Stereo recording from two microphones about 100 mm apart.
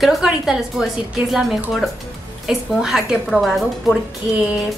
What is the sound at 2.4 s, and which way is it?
A woman's voice, 5° right (ahead or behind).